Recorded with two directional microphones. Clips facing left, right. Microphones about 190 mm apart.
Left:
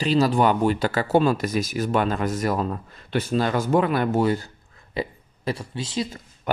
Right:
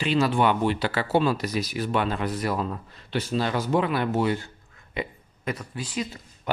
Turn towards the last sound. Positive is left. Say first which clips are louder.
# left 3 dB
turn(degrees=50)  # may be behind; listen again after turning